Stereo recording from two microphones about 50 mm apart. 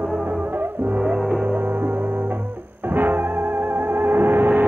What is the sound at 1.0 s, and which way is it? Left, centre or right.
Music, centre.